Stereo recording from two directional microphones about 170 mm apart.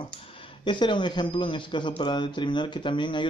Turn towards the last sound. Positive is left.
turn(degrees=30)  # may be behind; listen again after turning